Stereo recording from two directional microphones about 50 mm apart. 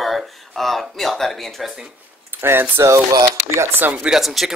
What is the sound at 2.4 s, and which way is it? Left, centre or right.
Speech, right.